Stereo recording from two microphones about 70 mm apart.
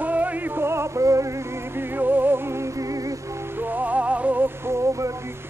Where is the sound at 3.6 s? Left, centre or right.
Right.